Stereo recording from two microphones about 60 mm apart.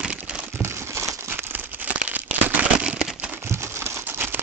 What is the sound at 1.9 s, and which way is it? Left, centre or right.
Crumpling, right.